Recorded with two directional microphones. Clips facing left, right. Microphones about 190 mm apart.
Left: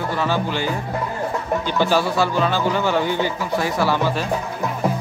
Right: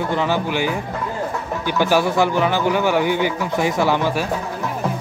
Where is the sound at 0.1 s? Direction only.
15° right (ahead or behind).